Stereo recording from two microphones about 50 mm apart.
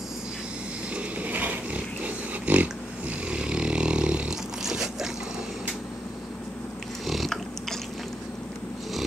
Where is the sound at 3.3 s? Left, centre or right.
Right.